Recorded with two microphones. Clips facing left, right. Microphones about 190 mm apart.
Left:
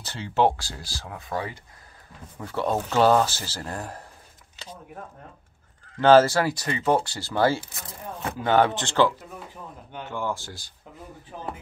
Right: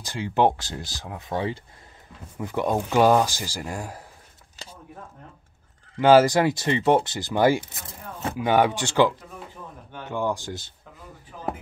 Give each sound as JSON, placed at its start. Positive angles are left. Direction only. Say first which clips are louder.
{"t": 0.0, "sound": "speech", "louder": "right 1 dB", "side_deg": -15}
{"t": 2.3, "sound": "speech", "louder": "right 2 dB", "side_deg": -15}
{"t": 5.9, "sound": "speech", "louder": "even", "side_deg": -10}